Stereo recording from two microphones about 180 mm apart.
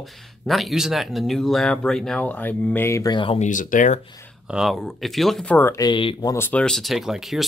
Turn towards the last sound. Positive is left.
turn(degrees=0)  # may be behind; listen again after turning